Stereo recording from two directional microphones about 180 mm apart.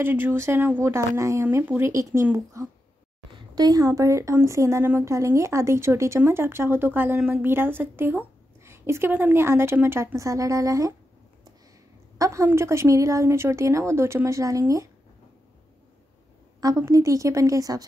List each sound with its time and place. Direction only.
0.0 s a woman's voice: 10° right (ahead or behind)
12.2 s a woman's voice: 15° right (ahead or behind)
16.6 s a woman's voice: 20° right (ahead or behind)